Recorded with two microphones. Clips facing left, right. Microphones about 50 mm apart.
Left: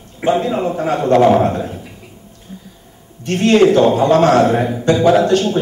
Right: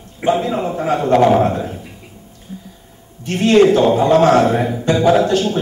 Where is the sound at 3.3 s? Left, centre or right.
Centre.